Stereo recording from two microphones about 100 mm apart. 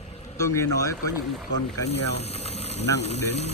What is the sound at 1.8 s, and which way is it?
Speech, 90° left.